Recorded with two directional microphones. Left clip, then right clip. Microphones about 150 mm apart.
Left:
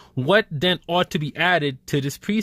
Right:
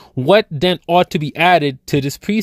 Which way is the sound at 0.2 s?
40° right (ahead or behind).